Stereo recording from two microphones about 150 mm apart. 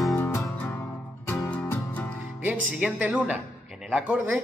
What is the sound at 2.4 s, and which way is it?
Speech, 5° right (ahead or behind).